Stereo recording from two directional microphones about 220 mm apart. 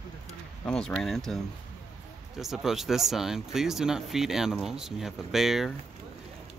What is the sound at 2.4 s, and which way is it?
Speech, centre (ahead or behind).